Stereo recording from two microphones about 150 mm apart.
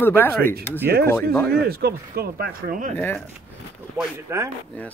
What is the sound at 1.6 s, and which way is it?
Speech, 90° right.